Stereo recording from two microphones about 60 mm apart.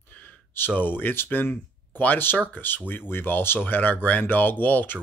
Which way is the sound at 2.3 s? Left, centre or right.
Left.